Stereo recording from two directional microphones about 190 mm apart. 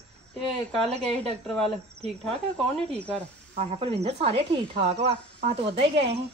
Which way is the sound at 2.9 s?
5° left (ahead or behind).